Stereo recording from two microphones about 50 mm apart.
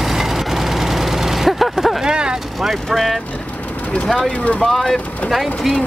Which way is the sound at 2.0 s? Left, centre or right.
Centre.